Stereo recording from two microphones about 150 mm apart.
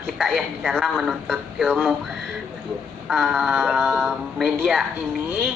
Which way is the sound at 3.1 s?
Centre (ahead or behind).